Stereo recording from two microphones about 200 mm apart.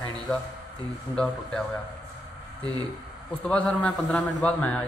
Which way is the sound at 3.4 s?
5° left (ahead or behind).